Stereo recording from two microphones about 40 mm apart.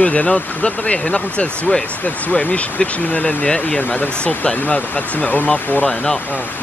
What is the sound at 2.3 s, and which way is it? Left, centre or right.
Speech, left.